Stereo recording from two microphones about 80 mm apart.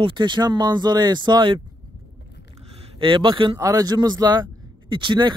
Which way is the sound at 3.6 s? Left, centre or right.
Right.